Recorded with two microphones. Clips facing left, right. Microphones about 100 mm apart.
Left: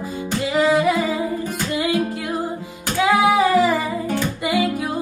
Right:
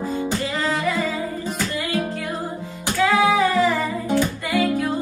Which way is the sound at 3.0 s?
15° left (ahead or behind).